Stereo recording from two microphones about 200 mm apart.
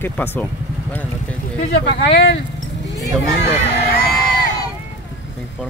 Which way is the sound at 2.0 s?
60° left (ahead or behind).